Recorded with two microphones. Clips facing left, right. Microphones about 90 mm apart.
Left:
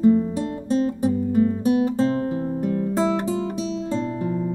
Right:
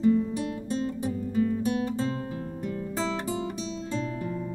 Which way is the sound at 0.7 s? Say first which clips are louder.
Left 11 dB; 55° left (ahead or behind).